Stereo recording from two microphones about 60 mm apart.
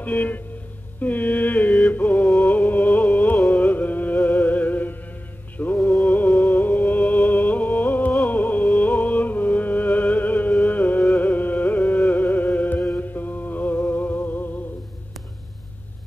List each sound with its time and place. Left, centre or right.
0.0 s speech: left
1.0 s mantra: left
2.2 s music: left
6.0 s music: left